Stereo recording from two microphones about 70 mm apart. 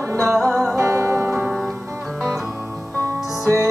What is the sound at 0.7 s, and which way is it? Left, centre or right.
Music, right.